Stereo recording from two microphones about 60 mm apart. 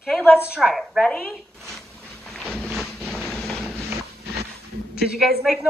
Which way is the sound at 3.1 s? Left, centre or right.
Centre.